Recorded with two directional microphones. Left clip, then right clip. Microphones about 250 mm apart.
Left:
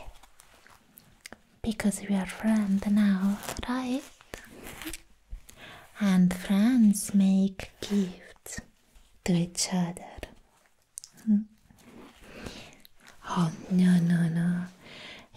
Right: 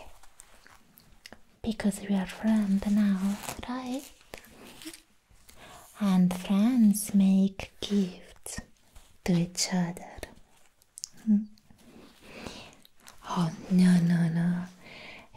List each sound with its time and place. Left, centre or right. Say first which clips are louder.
1.2 s speech: left 1 dB; centre
5.5 s speech: left 2 dB; centre
11.0 s a sound: even; centre
12.3 s biting: right 1 dB; centre
13.0 s whispering: left 1 dB; centre